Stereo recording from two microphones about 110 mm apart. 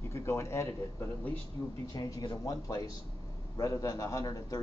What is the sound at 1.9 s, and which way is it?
A man's voice, 40° left (ahead or behind).